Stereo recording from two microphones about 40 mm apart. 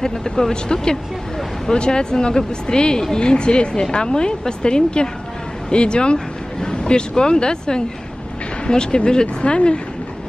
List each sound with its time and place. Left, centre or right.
0.0 s speech: centre